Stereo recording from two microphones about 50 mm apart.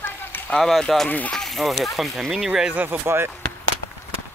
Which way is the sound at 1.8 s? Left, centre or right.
Centre.